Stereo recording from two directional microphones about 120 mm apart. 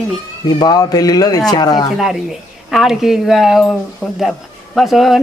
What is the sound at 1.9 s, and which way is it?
A man's voice, 5° right (ahead or behind).